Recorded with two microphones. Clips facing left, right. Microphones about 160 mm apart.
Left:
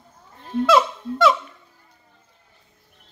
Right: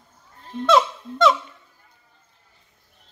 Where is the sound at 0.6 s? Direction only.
5° left (ahead or behind).